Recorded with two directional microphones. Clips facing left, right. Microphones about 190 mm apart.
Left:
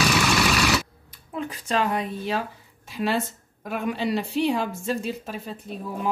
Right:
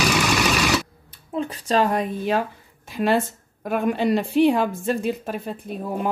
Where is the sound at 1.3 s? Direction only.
30° right (ahead or behind); by 5.6 s 55° right (ahead or behind).